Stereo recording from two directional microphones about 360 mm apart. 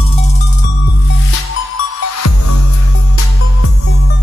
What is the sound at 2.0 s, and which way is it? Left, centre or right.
Music, left.